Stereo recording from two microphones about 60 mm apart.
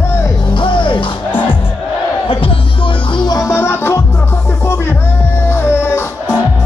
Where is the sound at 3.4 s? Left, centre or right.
Left.